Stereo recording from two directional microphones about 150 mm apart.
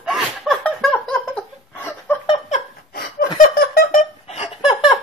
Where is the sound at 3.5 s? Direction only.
90° left.